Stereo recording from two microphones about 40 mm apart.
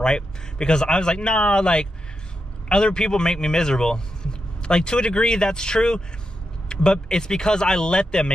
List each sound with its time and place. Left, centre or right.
0.0 s speech: left